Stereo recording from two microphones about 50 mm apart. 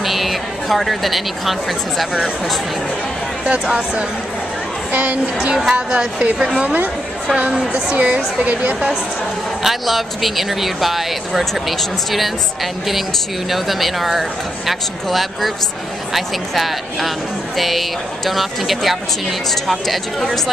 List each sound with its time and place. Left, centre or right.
0.0 s a woman's voice: centre
4.9 s a woman's voice: right
5.7 s a woman's voice: centre
9.6 s speech: centre
13.5 s speech: centre